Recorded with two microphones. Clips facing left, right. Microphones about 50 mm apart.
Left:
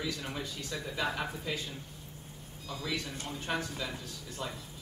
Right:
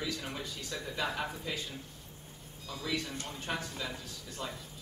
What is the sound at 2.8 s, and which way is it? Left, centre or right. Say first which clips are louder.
Speech: right 1 dB; centre.